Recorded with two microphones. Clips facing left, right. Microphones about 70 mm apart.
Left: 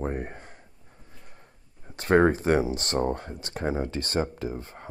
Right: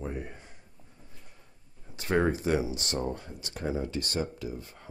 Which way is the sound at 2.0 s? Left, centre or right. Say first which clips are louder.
Left 6 dB; left.